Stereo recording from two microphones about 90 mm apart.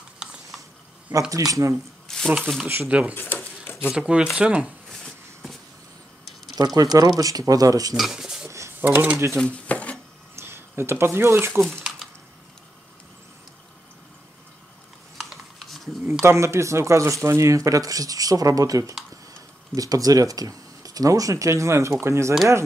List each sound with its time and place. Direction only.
1.3 s speech: 40° right (ahead or behind)
2.0 s speech: 5° left (ahead or behind)
2.6 s speech: 20° right (ahead or behind)
5.0 s a sound: 5° left (ahead or behind)
6.5 s speech: 45° right (ahead or behind)
7.9 s speech: 5° right (ahead or behind)
8.5 s a sound: 30° right (ahead or behind)
9.4 s dishes: 15° left (ahead or behind)
10.3 s speech: 30° right (ahead or behind)
15.1 s a sound: centre (ahead or behind)
16.1 s speech: 30° right (ahead or behind)